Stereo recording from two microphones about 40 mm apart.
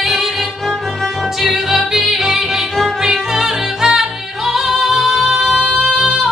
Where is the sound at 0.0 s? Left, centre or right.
Centre.